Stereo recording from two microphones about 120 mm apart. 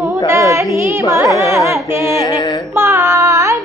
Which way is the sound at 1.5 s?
25° right (ahead or behind).